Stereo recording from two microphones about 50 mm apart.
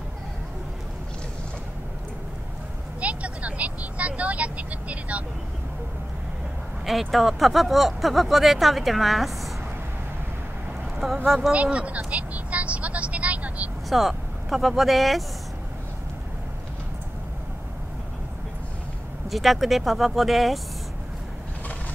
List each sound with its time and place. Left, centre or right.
3.0 s vehicle: right
6.9 s speech: centre
11.2 s speech: centre
11.5 s vehicle: right
13.8 s speech: centre
19.2 s speech: centre